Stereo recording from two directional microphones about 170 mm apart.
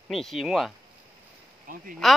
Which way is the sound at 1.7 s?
55° right (ahead or behind).